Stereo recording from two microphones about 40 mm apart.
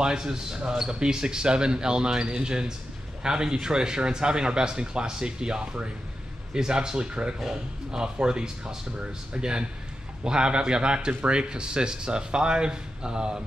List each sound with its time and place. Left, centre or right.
0.0 s speech: centre
7.3 s speech: centre